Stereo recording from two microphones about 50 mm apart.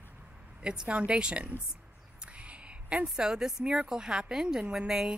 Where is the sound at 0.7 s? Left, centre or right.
Centre.